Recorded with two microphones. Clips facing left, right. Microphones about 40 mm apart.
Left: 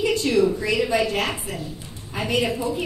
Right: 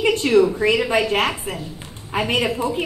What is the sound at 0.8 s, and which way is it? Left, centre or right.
A woman's voice, right.